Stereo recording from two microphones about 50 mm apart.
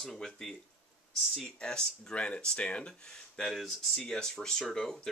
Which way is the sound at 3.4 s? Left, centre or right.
Centre.